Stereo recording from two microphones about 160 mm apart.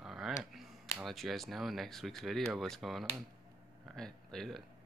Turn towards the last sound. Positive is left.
turn(degrees=0)  # may be behind; listen again after turning